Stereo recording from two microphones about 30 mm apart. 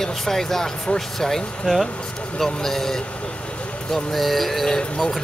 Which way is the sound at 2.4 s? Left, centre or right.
Centre.